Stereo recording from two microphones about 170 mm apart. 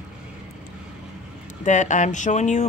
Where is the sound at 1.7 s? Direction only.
45° left (ahead or behind).